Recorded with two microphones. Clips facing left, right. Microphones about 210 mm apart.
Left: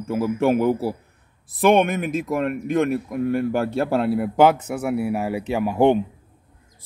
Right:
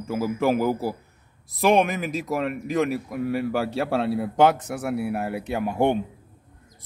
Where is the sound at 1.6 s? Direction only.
Centre (ahead or behind).